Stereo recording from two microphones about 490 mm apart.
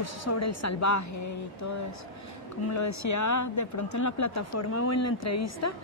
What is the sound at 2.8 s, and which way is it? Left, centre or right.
Speech, left.